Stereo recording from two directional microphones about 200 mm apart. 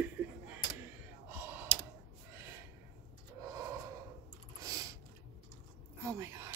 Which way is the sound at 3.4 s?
15° right (ahead or behind).